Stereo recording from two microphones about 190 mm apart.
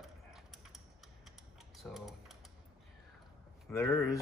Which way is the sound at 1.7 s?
Centre (ahead or behind).